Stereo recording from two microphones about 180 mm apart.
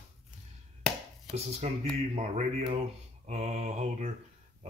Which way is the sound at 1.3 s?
35° right (ahead or behind).